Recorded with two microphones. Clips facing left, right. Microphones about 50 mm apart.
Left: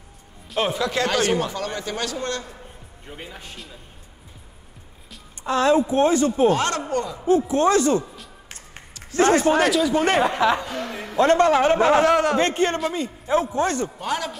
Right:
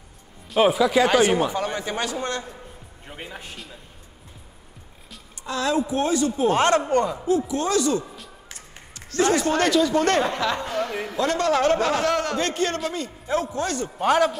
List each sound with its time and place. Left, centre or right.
0.5 s speech: centre; by 2.4 s right
3.1 s speech: centre
5.4 s speech: left
6.5 s a man's voice: right
7.2 s speech: left
9.2 s speech: left
9.5 s speech: centre
10.7 s a woman's voice: centre
11.1 s a man's voice: left; by 12.4 s centre
12.4 s a man's voice: left
13.9 s a man's voice: right